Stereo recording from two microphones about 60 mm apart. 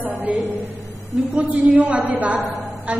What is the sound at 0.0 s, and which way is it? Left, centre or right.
A woman's voice, right.